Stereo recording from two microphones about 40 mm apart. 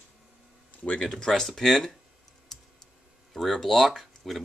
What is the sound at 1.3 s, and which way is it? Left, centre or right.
Speech, centre.